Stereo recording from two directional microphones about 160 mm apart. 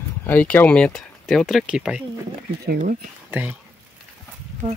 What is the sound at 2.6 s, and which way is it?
Speech, 60° right (ahead or behind).